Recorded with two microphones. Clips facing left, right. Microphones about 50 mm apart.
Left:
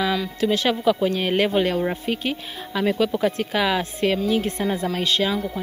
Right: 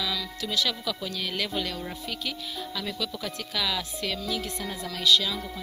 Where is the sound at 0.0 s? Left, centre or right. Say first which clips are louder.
Left 10 dB; left.